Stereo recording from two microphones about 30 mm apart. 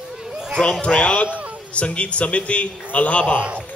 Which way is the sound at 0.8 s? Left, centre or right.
Left.